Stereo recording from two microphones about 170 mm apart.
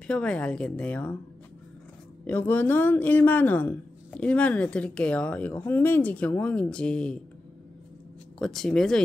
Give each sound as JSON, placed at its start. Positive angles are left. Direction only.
{"t": 0.0, "sound": "speech", "side_deg": 5}
{"t": 2.2, "sound": "speech", "side_deg": 10}
{"t": 8.4, "sound": "speech", "side_deg": 5}